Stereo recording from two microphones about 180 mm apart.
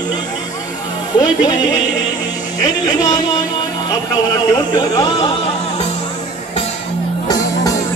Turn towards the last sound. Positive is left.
turn(degrees=20)  # may be behind; listen again after turning